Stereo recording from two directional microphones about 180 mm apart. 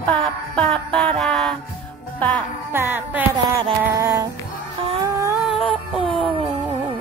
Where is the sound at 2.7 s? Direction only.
10° right (ahead or behind).